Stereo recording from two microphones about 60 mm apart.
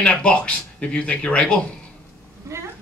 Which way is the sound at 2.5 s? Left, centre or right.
Right.